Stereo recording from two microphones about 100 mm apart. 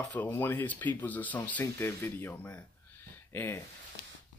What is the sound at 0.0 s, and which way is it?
Speech, 15° left (ahead or behind).